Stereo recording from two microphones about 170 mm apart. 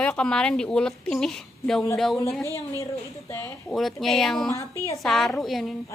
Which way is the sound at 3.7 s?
Centre (ahead or behind).